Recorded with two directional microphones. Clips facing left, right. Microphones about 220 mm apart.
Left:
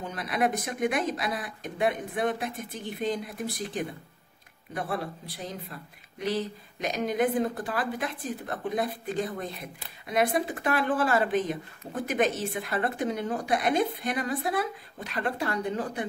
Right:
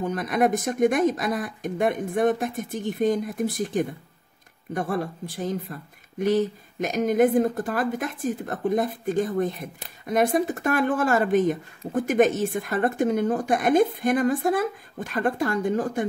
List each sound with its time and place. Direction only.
0.1 s speech: 45° right (ahead or behind)